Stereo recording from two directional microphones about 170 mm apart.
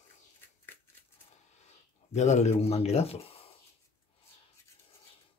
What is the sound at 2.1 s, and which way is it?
Speech, 40° left (ahead or behind).